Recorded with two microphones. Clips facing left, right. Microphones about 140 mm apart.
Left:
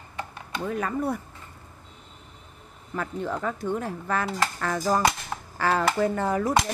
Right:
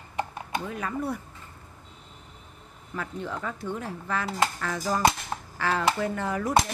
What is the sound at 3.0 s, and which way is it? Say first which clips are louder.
A woman's voice: left 4 dB; 45° left (ahead or behind).